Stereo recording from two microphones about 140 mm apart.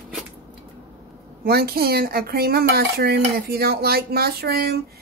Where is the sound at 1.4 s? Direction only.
90° right.